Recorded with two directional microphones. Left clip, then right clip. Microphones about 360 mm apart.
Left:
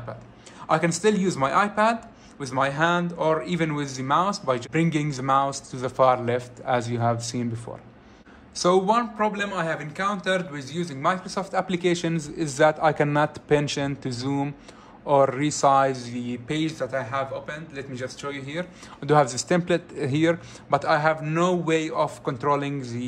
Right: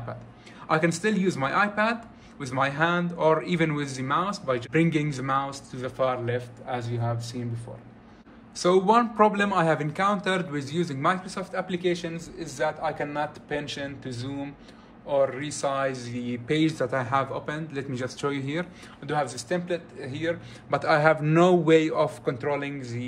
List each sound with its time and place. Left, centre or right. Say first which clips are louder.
0.7 s speech: left 3 dB; centre
8.5 s a man's voice: even; centre
19.0 s a man's voice: left 8 dB; centre
20.7 s speech: even; centre